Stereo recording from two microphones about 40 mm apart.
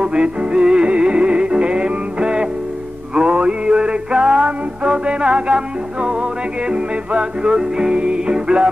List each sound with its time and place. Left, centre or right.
0.0 s music: right